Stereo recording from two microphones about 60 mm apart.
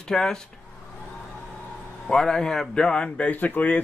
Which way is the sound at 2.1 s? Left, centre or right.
Centre.